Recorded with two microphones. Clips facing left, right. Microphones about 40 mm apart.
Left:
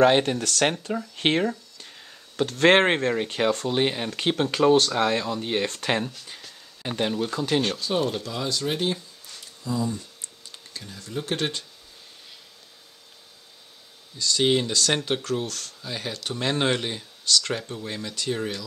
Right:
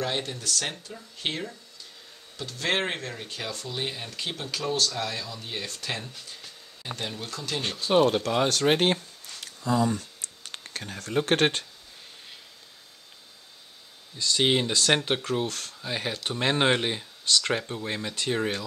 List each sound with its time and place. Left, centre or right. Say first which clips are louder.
0.0 s speech: left 11 dB; left
7.8 s speech: right 4 dB; right
8.2 s speech: right 5 dB; right
9.4 s a sound: right 3 dB; right
11.1 s speech: right 5 dB; right
14.1 s speech: left 2 dB; right